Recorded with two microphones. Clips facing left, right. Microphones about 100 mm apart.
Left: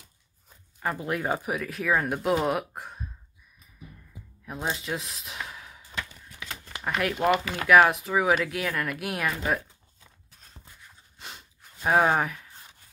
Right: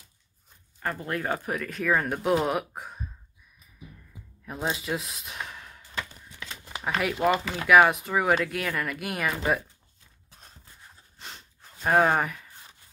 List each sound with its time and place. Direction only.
0.8 s speech: 10° left (ahead or behind)
4.5 s speech: centre (ahead or behind)
10.3 s a sound: 35° right (ahead or behind)
11.1 s gasp: 5° left (ahead or behind)